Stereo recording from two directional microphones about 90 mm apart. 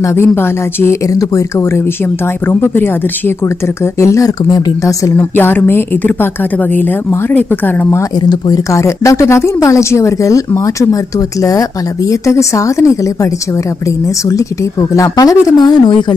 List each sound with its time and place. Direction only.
0.0 s speech: 25° left (ahead or behind)
1.1 s speech: 40° left (ahead or behind)
2.4 s speech: 25° left (ahead or behind)
5.3 s speech: 20° left (ahead or behind)
8.2 s speech: 50° left (ahead or behind)
8.6 s speech: 35° left (ahead or behind); by 16.1 s 55° left (ahead or behind)